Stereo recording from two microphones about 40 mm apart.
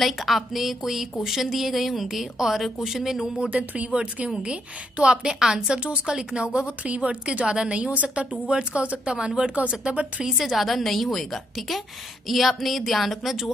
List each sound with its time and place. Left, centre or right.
0.0 s speech: centre
3.3 s a woman's voice: right
10.2 s speech: centre